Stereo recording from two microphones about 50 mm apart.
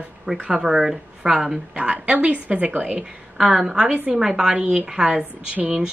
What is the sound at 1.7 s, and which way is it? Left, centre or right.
A woman's voice, right.